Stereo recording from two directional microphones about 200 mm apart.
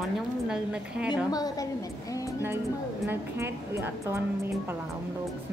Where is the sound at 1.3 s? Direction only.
20° left (ahead or behind).